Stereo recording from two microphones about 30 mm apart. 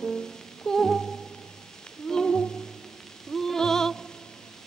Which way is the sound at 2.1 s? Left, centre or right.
Left.